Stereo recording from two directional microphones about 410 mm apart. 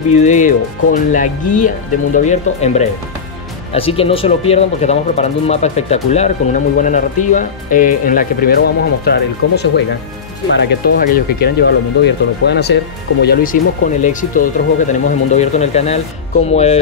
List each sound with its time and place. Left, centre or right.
0.1 s speech: centre